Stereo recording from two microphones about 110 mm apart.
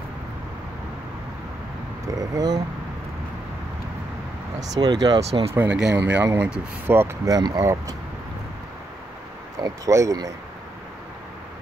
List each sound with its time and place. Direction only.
2.0 s speech: 35° right (ahead or behind)
4.7 s speech: 40° right (ahead or behind)
5.5 s speech: 15° right (ahead or behind)
7.3 s speech: 35° right (ahead or behind)
9.6 s speech: 30° right (ahead or behind)